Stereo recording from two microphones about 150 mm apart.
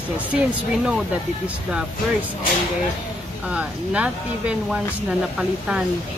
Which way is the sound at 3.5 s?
5° right (ahead or behind).